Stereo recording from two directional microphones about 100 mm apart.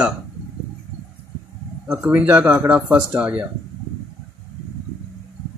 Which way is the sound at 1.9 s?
10° right (ahead or behind).